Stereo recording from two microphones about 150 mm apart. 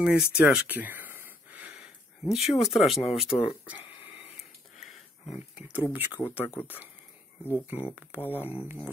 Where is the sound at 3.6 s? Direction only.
10° right (ahead or behind).